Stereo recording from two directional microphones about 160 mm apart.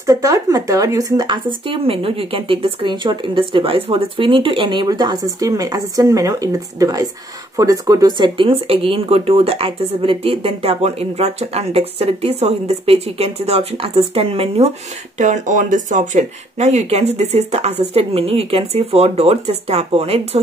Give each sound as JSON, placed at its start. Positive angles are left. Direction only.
{"t": 0.0, "sound": "speech", "side_deg": -20}
{"t": 15.1, "sound": "speech", "side_deg": -50}